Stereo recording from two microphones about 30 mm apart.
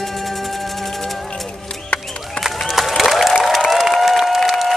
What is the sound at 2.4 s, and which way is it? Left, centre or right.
Applause, left.